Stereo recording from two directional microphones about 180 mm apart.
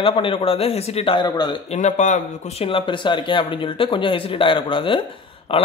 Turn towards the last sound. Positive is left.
turn(degrees=30)  # may be behind; listen again after turning